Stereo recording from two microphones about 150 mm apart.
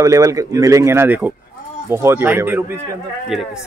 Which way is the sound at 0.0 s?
20° right (ahead or behind).